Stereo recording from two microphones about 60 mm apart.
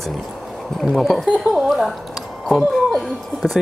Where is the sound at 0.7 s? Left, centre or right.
Centre.